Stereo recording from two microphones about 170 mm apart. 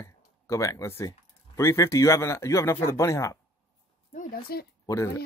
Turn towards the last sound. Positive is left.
turn(degrees=15)  # may be behind; listen again after turning